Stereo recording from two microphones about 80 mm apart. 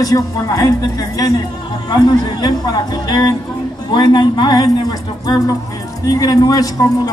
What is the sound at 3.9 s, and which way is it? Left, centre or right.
A woman's voice, left.